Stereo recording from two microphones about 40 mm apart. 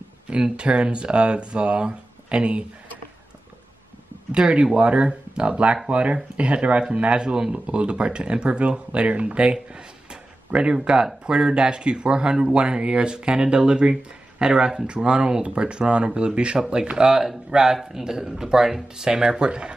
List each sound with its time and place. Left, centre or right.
0.4 s speech: right
4.3 s speech: right
7.2 s speech: right